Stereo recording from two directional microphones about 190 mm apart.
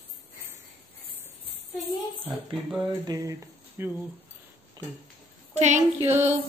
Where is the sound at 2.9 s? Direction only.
15° right (ahead or behind).